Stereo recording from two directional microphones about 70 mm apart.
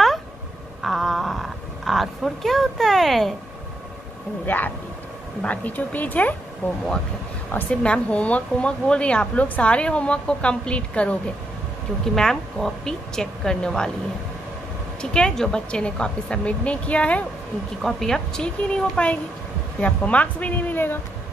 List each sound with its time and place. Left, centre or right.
0.8 s roaring cats: centre
4.5 s a woman's voice: left
7.8 s speech: centre
12.2 s speech: centre
15.0 s speech: centre
17.8 s a woman's voice: centre; by 21.0 s left